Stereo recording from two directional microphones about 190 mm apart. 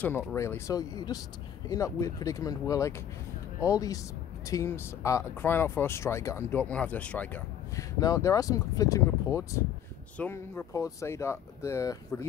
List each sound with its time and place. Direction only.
0.3 s speech: 15° left (ahead or behind)